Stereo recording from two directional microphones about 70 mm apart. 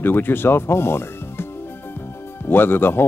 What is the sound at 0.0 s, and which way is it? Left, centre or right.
Speech, left.